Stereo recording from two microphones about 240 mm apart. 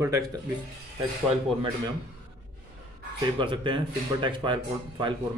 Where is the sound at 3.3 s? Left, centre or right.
Right.